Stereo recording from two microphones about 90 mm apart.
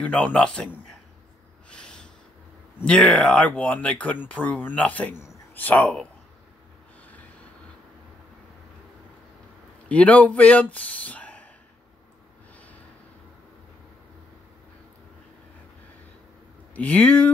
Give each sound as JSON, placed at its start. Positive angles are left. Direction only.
{"t": 0.0, "sound": "speech", "side_deg": 15}
{"t": 1.7, "sound": "snort", "side_deg": 10}
{"t": 2.8, "sound": "speech", "side_deg": 10}
{"t": 9.8, "sound": "speech", "side_deg": 15}
{"t": 16.7, "sound": "speech", "side_deg": 15}